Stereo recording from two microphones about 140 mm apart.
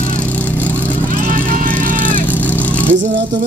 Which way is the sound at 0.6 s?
10° left (ahead or behind).